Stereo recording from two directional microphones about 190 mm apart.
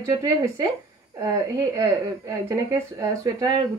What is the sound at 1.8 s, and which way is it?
Speech, 15° right (ahead or behind).